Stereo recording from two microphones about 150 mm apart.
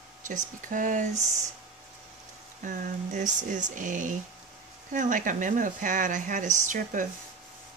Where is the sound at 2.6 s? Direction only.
55° right (ahead or behind).